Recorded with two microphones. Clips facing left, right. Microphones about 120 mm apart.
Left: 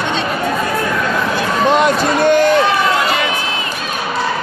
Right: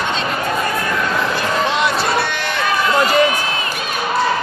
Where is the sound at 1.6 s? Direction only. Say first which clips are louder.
Left 5 dB; 45° left (ahead or behind).